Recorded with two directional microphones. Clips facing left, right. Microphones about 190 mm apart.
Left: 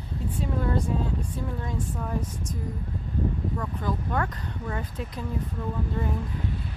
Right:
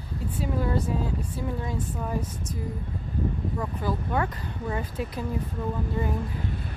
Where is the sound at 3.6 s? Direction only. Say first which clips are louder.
Right 1 dB; 5° right (ahead or behind).